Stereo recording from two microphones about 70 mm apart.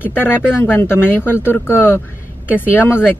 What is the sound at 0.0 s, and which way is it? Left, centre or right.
Speech, left.